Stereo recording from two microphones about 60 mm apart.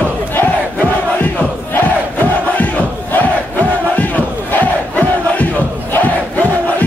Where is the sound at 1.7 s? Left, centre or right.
Left.